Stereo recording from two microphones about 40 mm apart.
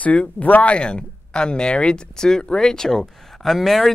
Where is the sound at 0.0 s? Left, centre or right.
Left.